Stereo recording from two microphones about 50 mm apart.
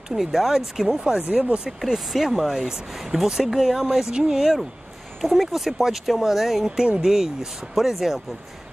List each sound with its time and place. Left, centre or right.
0.1 s speech: centre
1.2 s speech: right
1.7 s speech: centre
6.8 s speech: centre